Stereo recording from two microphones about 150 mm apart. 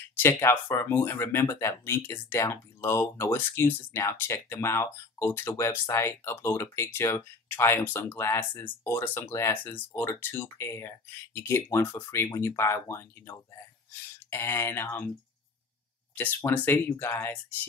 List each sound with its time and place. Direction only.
0.2 s speech: 15° left (ahead or behind)
16.2 s speech: 10° left (ahead or behind)